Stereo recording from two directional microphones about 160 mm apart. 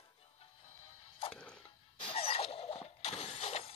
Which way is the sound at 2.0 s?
35° left (ahead or behind).